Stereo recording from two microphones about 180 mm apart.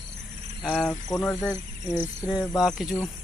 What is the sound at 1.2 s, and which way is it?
Speech, 5° left (ahead or behind).